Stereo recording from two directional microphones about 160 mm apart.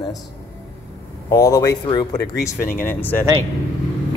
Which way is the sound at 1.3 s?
20° left (ahead or behind).